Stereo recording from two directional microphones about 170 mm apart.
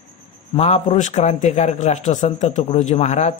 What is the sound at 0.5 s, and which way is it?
A man's voice, 40° left (ahead or behind).